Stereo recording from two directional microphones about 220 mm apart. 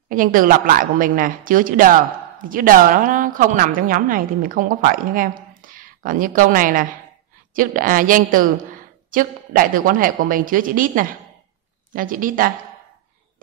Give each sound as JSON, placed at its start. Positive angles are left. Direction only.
{"t": 0.1, "sound": "a woman's voice", "side_deg": -40}